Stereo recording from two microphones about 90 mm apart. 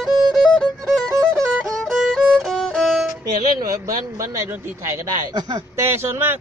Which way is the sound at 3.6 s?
40° right (ahead or behind).